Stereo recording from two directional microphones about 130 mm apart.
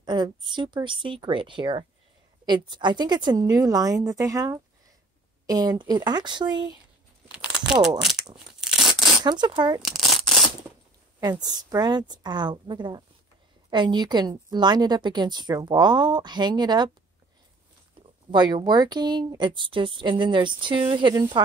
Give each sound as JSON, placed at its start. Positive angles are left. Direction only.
{"t": 0.0, "sound": "a woman's voice", "side_deg": -35}
{"t": 7.2, "sound": "a sound", "side_deg": -5}
{"t": 8.0, "sound": "speech", "side_deg": 0}
{"t": 8.5, "sound": "tearing", "side_deg": -5}
{"t": 9.2, "sound": "a woman's voice", "side_deg": -35}
{"t": 9.8, "sound": "a sound", "side_deg": 0}
{"t": 11.1, "sound": "a woman's voice", "side_deg": -30}
{"t": 18.3, "sound": "a woman's voice", "side_deg": -35}